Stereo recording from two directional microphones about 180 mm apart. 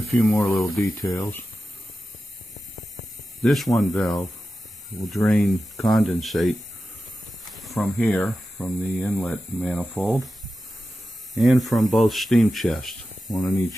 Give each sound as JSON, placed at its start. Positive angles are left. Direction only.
{"t": 0.1, "sound": "speech", "side_deg": 5}
{"t": 1.0, "sound": "speech", "side_deg": 20}
{"t": 3.4, "sound": "speech", "side_deg": 0}
{"t": 5.2, "sound": "speech", "side_deg": 5}
{"t": 7.4, "sound": "snake", "side_deg": 0}
{"t": 9.0, "sound": "speech", "side_deg": 5}
{"t": 11.3, "sound": "speech", "side_deg": 0}
{"t": 13.3, "sound": "speech", "side_deg": 20}